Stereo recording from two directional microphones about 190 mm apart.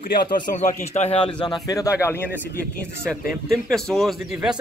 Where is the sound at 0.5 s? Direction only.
40° left (ahead or behind).